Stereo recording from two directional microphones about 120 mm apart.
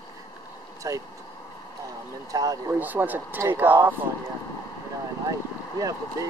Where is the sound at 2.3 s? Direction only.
30° right (ahead or behind).